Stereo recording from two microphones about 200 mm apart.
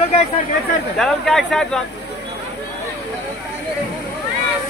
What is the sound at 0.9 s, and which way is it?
Speech, centre (ahead or behind).